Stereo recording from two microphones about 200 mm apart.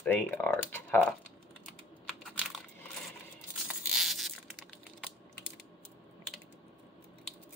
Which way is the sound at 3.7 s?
5° right (ahead or behind).